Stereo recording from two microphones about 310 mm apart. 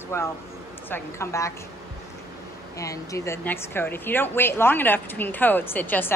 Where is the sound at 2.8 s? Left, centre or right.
Centre.